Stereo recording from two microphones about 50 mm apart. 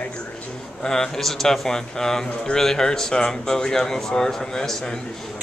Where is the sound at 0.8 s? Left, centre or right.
Centre.